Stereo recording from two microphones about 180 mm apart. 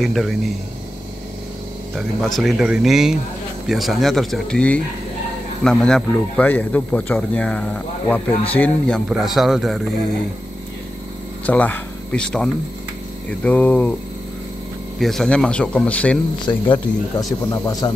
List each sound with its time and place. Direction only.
0.0 s a man's voice: centre (ahead or behind)
2.0 s a man's voice: centre (ahead or behind)
11.4 s speech: 10° left (ahead or behind)
15.0 s a man's voice: centre (ahead or behind)
16.4 s speech: 25° left (ahead or behind)